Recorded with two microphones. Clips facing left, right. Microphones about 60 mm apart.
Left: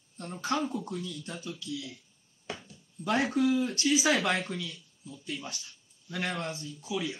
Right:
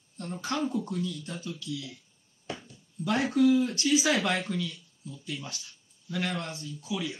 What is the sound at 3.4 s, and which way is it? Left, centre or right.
Speech, centre.